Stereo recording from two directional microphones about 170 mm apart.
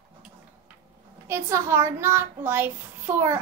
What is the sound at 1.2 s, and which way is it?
A child's voice, 15° right (ahead or behind).